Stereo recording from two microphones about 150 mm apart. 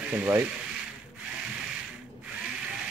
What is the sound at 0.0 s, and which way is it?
Ratchet, 10° right (ahead or behind).